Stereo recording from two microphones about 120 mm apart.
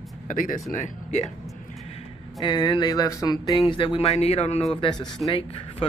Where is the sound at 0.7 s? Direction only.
85° left.